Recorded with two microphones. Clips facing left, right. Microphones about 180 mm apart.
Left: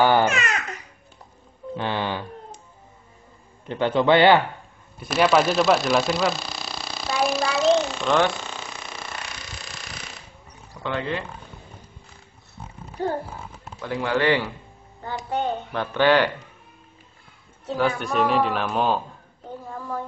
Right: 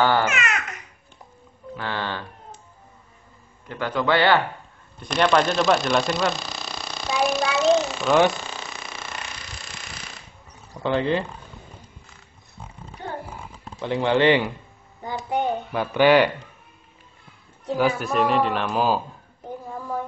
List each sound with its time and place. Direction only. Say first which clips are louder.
0.0 s speech: left 2 dB; 15° left (ahead or behind)
0.3 s babbling: left 1 dB; 35° left (ahead or behind)
1.8 s cat: left 3 dB; 15° left (ahead or behind)
3.6 s a man's voice: left 4 dB; 25° left (ahead or behind)
4.9 s a sound: left 1 dB; 5° left (ahead or behind)
10.8 s speech: right 5 dB; 30° right (ahead or behind)
13.0 s a sound: left 8 dB; 35° left (ahead or behind)
13.7 s a child's voice: right 4 dB; 25° right (ahead or behind)
17.6 s a man's voice: right 2 dB; 10° right (ahead or behind)